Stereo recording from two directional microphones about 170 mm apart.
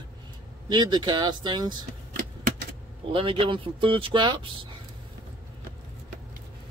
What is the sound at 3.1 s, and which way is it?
Speech, 30° right (ahead or behind).